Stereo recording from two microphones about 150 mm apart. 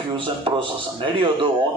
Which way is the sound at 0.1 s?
35° right (ahead or behind).